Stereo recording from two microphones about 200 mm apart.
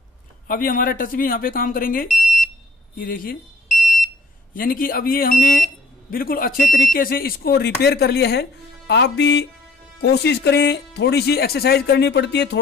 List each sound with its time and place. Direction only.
0.5 s speech: 45° left (ahead or behind)
2.1 s smoke detector: centre (ahead or behind)
3.0 s speech: 45° left (ahead or behind)
4.6 s speech: 45° left (ahead or behind)